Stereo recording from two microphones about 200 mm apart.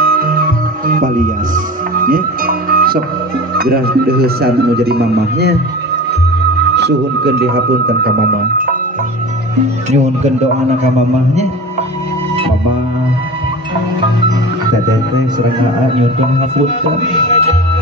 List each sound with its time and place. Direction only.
0.8 s music: 45° right (ahead or behind)
3.5 s speech: 50° right (ahead or behind)
6.7 s speech: 55° right (ahead or behind)
9.8 s speech: 35° right (ahead or behind)